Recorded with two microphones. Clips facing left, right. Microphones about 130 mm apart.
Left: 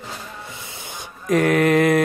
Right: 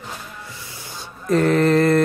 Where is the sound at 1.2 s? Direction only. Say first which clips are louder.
Even; 75° left (ahead or behind).